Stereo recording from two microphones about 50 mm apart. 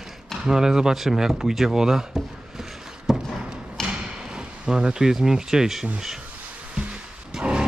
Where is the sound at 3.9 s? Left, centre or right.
Centre.